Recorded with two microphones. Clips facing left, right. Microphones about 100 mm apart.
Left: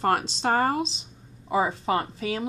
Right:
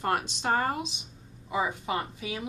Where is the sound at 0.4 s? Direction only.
35° left (ahead or behind).